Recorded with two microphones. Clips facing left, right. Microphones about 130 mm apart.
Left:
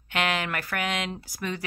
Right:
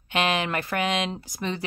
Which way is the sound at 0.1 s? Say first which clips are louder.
Right 3 dB; 20° right (ahead or behind).